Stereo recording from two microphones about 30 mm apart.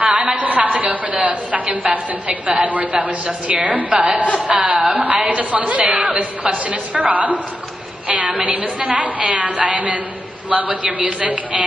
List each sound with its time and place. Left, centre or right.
0.0 s a woman's voice: right
8.1 s a woman's voice: right